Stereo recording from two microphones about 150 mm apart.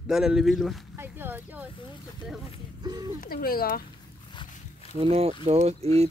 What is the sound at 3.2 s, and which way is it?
Speech, 75° left (ahead or behind).